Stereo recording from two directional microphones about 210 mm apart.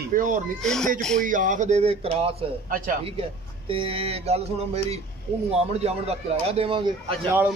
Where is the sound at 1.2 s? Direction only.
40° right (ahead or behind).